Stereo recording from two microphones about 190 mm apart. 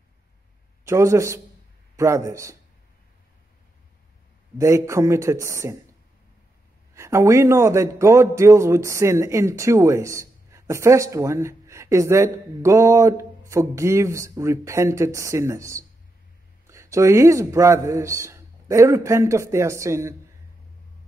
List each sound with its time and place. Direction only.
0.8 s a man's voice: 15° right (ahead or behind)
4.6 s a man's voice: 15° right (ahead or behind)
7.0 s a man's voice: 15° right (ahead or behind)